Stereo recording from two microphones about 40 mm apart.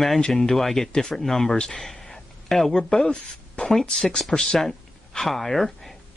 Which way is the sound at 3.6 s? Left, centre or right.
Left.